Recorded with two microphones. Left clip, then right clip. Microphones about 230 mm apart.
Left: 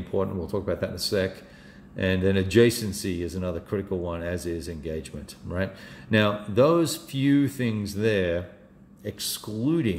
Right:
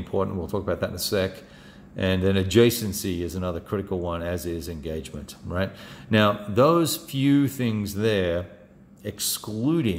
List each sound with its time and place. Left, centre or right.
0.1 s speech: centre